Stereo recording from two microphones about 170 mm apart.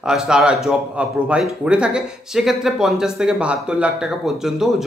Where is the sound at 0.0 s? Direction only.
5° right (ahead or behind).